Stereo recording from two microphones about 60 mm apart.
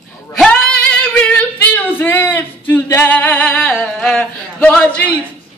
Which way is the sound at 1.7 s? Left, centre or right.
Left.